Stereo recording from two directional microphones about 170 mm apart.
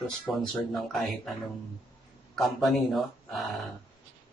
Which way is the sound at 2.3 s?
Centre (ahead or behind).